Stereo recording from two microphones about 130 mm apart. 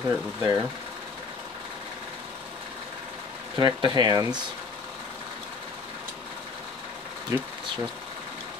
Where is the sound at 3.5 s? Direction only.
35° right (ahead or behind).